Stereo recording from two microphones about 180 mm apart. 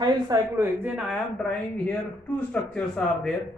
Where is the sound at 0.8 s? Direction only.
Centre (ahead or behind).